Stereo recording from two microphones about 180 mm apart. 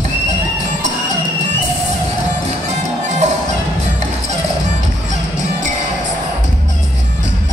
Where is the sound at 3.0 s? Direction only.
40° right (ahead or behind).